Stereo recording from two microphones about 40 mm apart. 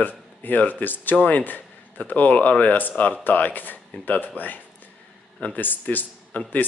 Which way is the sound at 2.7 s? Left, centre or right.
Left.